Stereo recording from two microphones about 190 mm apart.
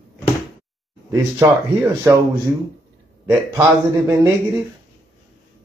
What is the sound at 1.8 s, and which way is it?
Speech, 10° right (ahead or behind).